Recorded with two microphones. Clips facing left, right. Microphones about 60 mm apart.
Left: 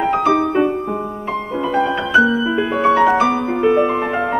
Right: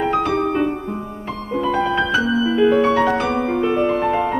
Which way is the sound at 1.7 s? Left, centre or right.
Centre.